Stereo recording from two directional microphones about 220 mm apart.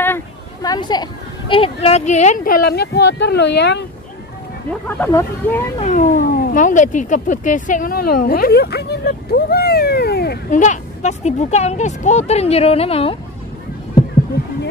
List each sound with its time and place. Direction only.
0.0 s a sound: 15° left (ahead or behind)
1.5 s speech: 25° left (ahead or behind); by 3.8 s 50° left (ahead or behind)
4.8 s speech: 10° left (ahead or behind)
5.8 s speech: 35° left (ahead or behind)
10.6 s speech: 35° left (ahead or behind)